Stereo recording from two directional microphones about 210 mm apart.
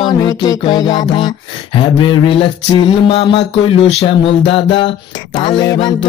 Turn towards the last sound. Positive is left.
turn(degrees=20)  # may be behind; listen again after turning